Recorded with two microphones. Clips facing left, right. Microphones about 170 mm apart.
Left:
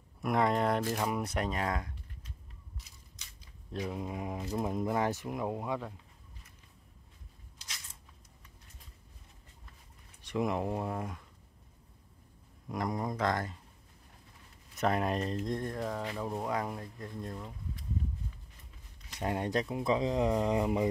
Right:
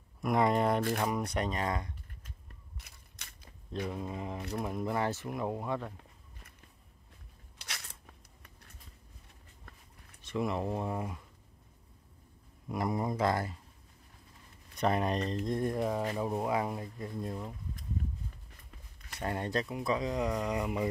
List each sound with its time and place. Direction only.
0.2 s speech: centre (ahead or behind)
2.8 s cap gun: 60° right (ahead or behind)
3.8 s speech: 10° left (ahead or behind)
7.5 s a sound: 65° right (ahead or behind)
10.2 s speech: 15° left (ahead or behind)
10.9 s speech: centre (ahead or behind)
12.6 s speech: 5° right (ahead or behind)
14.8 s speech: centre (ahead or behind)
15.6 s speech: 10° right (ahead or behind)
19.1 s speech: 15° left (ahead or behind)